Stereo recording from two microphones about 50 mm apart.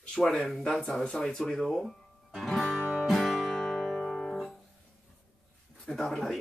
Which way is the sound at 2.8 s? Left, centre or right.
Left.